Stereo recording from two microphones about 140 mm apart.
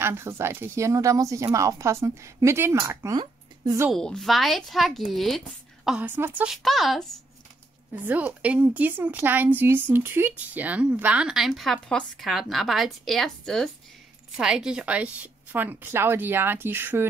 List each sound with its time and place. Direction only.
0.0 s speech: 20° right (ahead or behind)
3.9 s speech: 5° left (ahead or behind)
5.9 s a woman's voice: 15° right (ahead or behind)
6.5 s speech: centre (ahead or behind)
7.9 s a woman's voice: 10° right (ahead or behind)